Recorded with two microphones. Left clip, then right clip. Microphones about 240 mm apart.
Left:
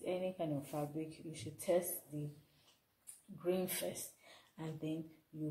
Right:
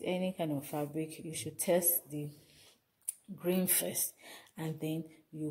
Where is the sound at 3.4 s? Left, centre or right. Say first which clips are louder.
Right 4 dB; right.